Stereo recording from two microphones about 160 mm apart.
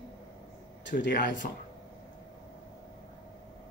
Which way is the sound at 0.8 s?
60° left (ahead or behind).